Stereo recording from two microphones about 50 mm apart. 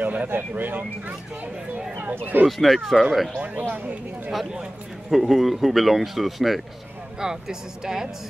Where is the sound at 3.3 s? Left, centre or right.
Right.